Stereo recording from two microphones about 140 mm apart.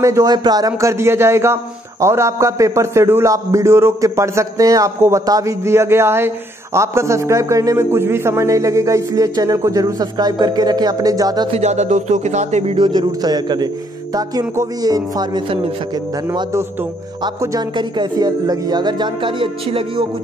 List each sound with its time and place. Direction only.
0.0 s a man's voice: 25° right (ahead or behind)
11.5 s speech: 55° right (ahead or behind)
12.7 s a man's voice: 35° right (ahead or behind)
17.4 s a man's voice: 20° right (ahead or behind)
17.7 s speech: 30° right (ahead or behind)